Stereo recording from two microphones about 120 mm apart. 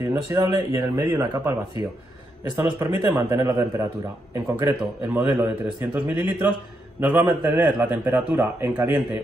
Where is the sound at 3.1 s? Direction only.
30° right (ahead or behind).